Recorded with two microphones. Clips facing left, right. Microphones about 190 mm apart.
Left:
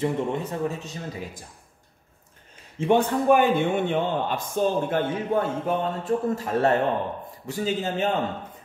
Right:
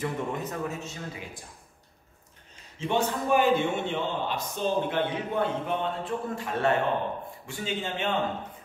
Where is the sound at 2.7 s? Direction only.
55° left (ahead or behind).